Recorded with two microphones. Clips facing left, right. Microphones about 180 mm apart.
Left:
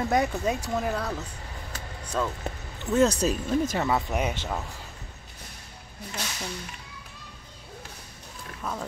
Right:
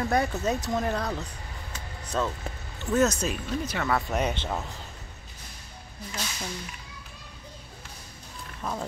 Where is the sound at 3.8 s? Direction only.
10° left (ahead or behind).